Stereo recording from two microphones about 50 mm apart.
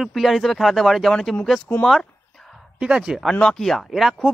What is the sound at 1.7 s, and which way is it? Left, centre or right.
Speech, left.